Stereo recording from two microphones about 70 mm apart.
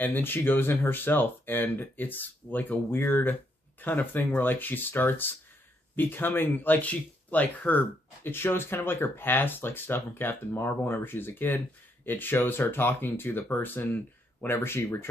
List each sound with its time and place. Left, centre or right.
0.0 s speech: left